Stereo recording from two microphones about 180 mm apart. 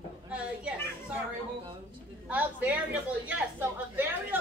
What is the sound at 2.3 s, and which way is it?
A woman's voice, 10° right (ahead or behind).